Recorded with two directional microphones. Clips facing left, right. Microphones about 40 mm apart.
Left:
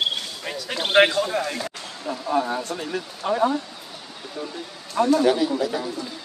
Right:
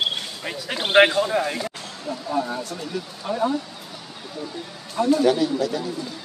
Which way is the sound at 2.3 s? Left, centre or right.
Left.